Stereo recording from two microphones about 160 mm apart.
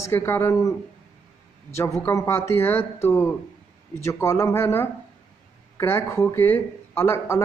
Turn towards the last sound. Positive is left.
turn(degrees=15)  # may be behind; listen again after turning